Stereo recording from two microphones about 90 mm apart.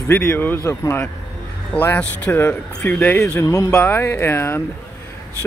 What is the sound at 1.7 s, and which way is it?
Speech, 20° left (ahead or behind).